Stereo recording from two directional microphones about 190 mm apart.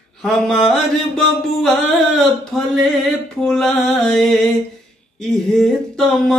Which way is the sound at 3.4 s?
5° left (ahead or behind).